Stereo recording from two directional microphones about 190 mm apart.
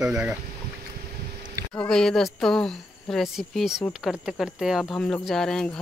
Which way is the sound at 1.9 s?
Centre (ahead or behind).